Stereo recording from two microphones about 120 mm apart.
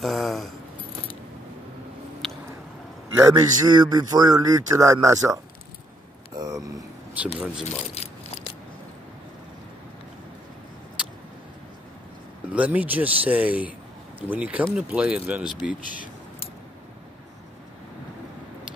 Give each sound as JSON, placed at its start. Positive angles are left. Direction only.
{"t": 0.0, "sound": "speech", "side_deg": 0}
{"t": 2.2, "sound": "a sound", "side_deg": 5}
{"t": 3.2, "sound": "a man's voice", "side_deg": -30}
{"t": 7.2, "sound": "speech", "side_deg": -5}
{"t": 7.6, "sound": "keys jangling", "side_deg": 65}
{"t": 12.5, "sound": "speech", "side_deg": -10}